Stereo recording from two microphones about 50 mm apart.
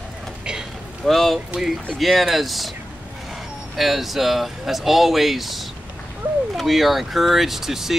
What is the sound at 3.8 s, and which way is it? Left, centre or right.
Speech, centre.